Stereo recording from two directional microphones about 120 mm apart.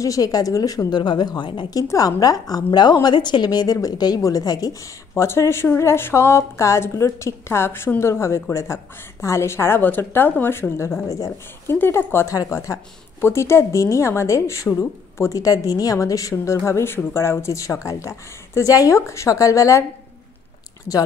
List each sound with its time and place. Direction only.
0.0 s a woman's voice: 30° left (ahead or behind)